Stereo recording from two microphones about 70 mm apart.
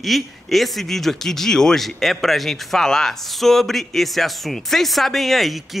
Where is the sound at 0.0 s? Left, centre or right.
Centre.